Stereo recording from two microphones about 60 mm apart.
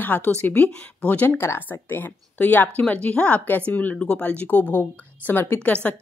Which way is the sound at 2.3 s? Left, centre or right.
Left.